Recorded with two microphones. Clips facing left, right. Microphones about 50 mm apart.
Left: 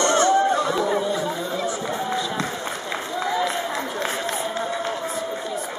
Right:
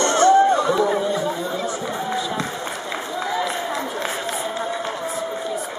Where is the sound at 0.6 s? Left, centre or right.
Centre.